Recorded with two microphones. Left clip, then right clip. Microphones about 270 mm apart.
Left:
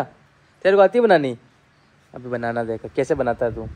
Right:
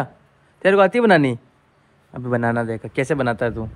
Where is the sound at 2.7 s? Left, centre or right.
Right.